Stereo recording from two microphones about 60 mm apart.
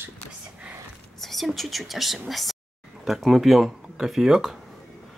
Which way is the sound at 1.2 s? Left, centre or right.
Centre.